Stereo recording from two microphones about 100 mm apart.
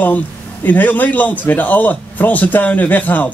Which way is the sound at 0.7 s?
15° left (ahead or behind).